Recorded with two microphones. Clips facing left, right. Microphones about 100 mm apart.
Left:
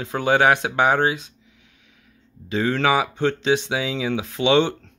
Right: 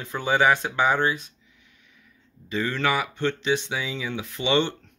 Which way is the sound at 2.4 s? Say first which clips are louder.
Left 5 dB; 90° left.